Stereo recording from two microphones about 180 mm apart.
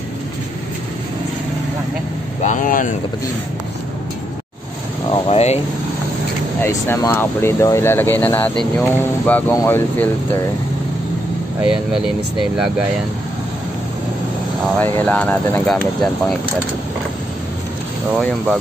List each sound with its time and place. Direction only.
2.4 s speech: 45° left (ahead or behind)
5.1 s air conditioning: 35° left (ahead or behind)
6.6 s speech: 15° left (ahead or behind)
11.6 s speech: 5° right (ahead or behind)
14.8 s speech: 10° left (ahead or behind)